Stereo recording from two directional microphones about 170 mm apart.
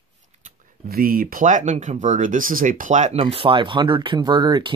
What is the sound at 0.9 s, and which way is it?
Speech, 60° right (ahead or behind).